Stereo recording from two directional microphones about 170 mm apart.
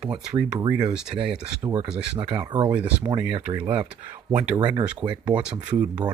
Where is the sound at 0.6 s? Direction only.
25° right (ahead or behind).